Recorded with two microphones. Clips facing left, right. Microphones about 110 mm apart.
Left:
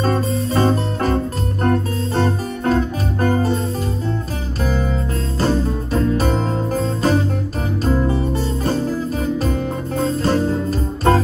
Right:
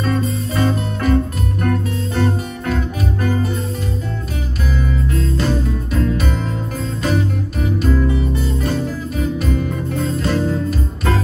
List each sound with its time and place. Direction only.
0.0 s music: 35° left (ahead or behind)
5.4 s music: 35° left (ahead or behind)